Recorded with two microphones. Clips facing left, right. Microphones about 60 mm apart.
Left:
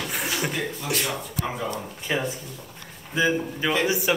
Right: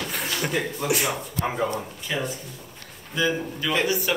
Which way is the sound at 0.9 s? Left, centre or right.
Centre.